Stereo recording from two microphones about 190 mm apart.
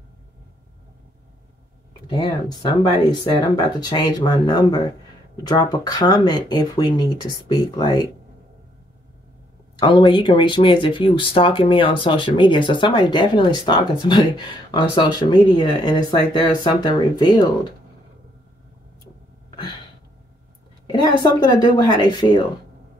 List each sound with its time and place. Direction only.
2.0 s speech: 20° left (ahead or behind)
9.8 s speech: 25° left (ahead or behind)
19.5 s a sound: 20° left (ahead or behind)
20.9 s speech: 20° left (ahead or behind)